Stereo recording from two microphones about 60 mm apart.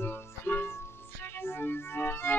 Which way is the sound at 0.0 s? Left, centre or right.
Left.